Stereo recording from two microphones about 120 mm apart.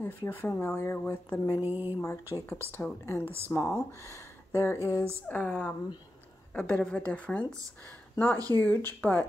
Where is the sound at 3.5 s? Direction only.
20° left (ahead or behind).